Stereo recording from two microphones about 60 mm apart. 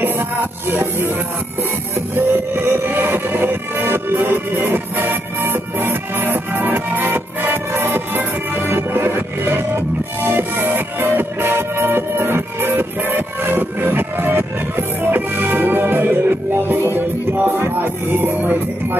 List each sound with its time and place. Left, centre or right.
0.7 s music: right
2.1 s music: right